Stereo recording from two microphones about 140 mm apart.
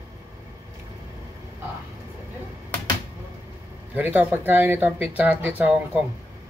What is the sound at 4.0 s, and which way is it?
Speech, 10° right (ahead or behind).